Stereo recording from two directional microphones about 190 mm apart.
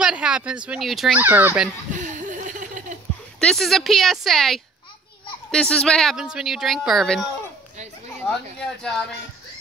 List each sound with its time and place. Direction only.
0.0 s a woman's voice: 5° right (ahead or behind)
1.9 s laughter: 40° right (ahead or behind)
3.3 s a woman's voice: 5° left (ahead or behind)